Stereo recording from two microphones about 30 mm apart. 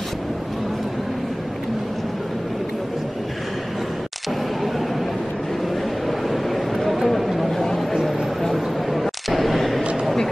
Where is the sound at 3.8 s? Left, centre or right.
Centre.